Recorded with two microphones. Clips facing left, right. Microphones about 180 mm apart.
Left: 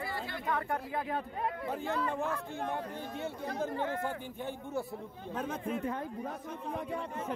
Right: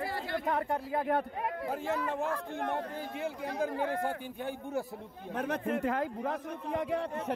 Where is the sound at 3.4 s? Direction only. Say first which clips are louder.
Right 2 dB; 10° right (ahead or behind).